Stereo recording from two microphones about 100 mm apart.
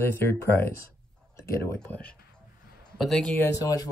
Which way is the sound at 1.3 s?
30° left (ahead or behind).